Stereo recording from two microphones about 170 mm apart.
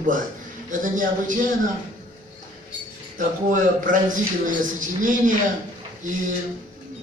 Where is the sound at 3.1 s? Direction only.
50° right (ahead or behind).